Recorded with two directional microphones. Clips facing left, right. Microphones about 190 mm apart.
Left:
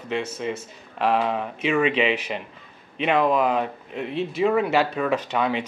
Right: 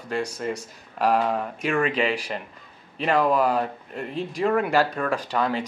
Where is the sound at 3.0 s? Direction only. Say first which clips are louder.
Left 1 dB; 5° right (ahead or behind).